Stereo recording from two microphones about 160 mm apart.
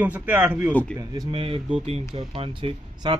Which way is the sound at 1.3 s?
35° right (ahead or behind).